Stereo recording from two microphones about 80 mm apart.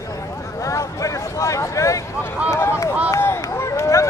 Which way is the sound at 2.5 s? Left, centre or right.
Left.